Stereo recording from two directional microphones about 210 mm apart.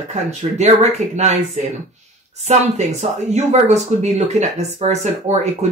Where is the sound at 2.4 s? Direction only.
30° right (ahead or behind).